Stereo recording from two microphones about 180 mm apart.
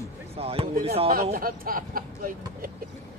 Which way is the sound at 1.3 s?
55° right (ahead or behind).